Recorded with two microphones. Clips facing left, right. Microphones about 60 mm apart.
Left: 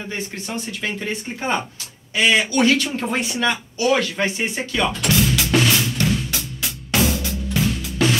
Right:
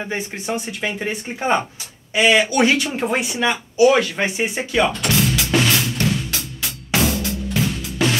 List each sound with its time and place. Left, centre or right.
0.0 s speech: right
5.0 s music: centre